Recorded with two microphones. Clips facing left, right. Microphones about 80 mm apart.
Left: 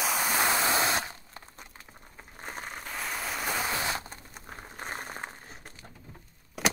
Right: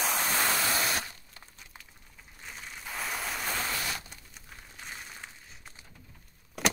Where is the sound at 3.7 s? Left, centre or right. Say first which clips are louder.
Left 4 dB; left.